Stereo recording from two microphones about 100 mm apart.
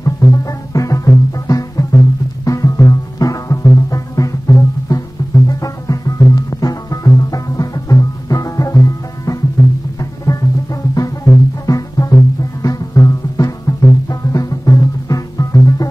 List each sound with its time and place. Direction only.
0.0 s music: 35° left (ahead or behind)